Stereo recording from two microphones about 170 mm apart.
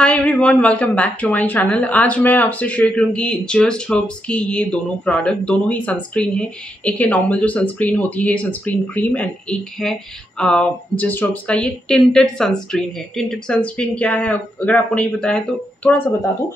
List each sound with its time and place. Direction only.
0.0 s a woman's voice: 5° left (ahead or behind)